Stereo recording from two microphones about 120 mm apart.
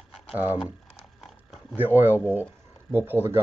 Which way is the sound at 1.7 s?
15° right (ahead or behind).